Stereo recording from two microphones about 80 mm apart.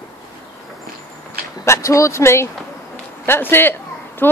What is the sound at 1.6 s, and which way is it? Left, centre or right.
Speech, left.